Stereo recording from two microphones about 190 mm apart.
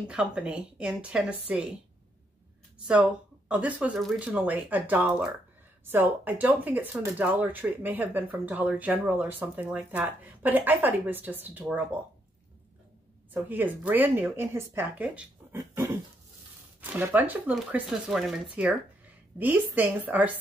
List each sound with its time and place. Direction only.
0.1 s speech: 5° right (ahead or behind)
2.9 s speech: 5° right (ahead or behind)
13.3 s speech: 10° right (ahead or behind)